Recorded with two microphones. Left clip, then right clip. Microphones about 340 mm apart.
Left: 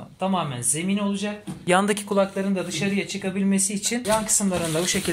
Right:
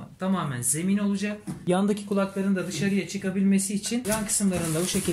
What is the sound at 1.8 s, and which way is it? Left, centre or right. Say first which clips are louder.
Speech: left 5 dB; left.